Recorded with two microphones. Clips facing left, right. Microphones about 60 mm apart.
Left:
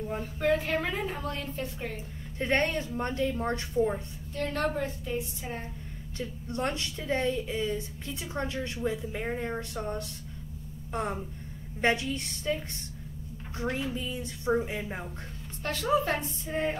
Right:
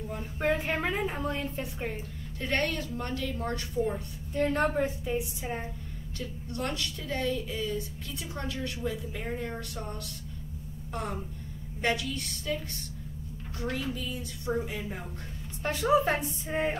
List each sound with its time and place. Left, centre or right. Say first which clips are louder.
0.2 s a woman's voice: left 1 dB; centre
2.3 s a woman's voice: left 3 dB; left
4.3 s a woman's voice: right 3 dB; centre
6.1 s a woman's voice: left 3 dB; left
13.6 s a woman's voice: left 2 dB; left
15.6 s a woman's voice: right 2 dB; centre